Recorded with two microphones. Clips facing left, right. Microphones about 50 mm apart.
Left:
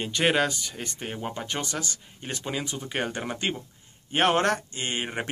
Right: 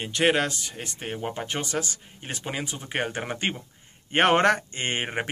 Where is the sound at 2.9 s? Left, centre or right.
Right.